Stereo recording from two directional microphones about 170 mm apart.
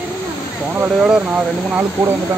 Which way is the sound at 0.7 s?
10° right (ahead or behind).